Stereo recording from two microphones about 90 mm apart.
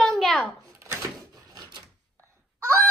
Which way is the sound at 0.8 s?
35° right (ahead or behind).